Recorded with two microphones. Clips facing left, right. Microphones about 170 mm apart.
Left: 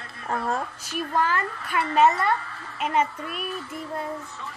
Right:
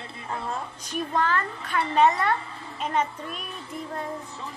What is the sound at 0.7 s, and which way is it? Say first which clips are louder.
A woman's voice: left 1 dB; 5° left (ahead or behind).